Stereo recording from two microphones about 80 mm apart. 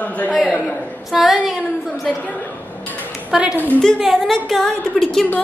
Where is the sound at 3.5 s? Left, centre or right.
Left.